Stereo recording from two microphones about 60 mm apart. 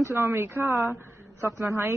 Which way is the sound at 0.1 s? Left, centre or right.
Right.